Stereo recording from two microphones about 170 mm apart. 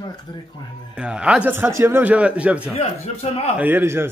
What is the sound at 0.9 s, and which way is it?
A man's voice, 5° right (ahead or behind).